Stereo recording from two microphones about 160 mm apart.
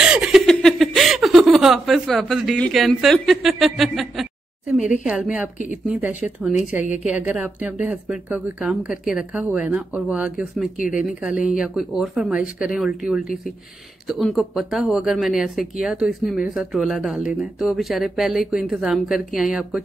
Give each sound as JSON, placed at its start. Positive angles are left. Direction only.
{"t": 0.0, "sound": "chuckle", "side_deg": -5}
{"t": 5.0, "sound": "speech", "side_deg": -5}
{"t": 10.8, "sound": "speech", "side_deg": 60}
{"t": 11.2, "sound": "speech", "side_deg": -5}